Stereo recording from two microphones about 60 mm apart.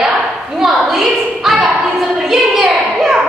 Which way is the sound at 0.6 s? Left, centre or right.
Centre.